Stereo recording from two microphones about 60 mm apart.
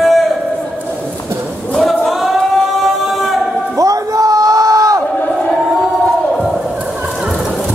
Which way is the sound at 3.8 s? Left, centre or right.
Right.